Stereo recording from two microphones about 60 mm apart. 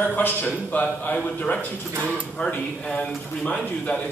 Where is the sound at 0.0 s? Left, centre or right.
Left.